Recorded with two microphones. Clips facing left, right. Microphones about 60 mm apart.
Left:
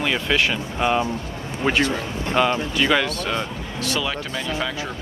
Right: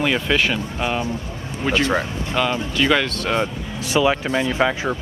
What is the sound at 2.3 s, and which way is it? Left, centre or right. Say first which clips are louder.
Speech: left 1 dB; centre.